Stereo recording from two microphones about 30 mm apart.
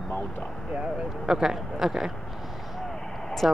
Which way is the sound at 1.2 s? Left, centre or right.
Centre.